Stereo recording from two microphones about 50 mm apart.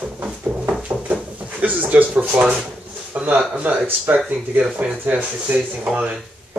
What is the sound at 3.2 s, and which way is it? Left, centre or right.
Speech, right.